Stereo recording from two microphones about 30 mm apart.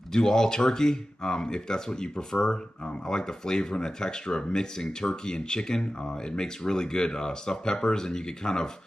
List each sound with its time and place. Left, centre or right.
0.1 s speech: left